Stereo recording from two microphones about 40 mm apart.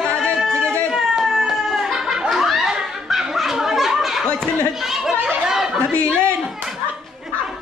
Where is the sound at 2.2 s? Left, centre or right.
Centre.